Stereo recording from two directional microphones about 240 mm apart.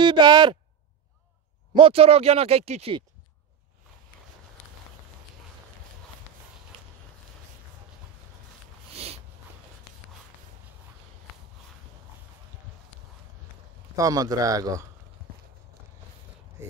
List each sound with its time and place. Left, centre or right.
0.0 s speech: centre
1.7 s speech: right
8.9 s a sound: right
13.9 s speech: centre